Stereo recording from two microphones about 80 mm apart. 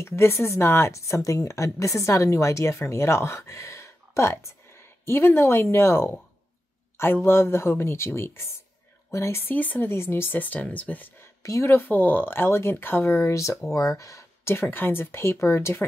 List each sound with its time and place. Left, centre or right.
0.0 s a woman's voice: left
7.2 s a woman's voice: left
11.4 s a woman's voice: left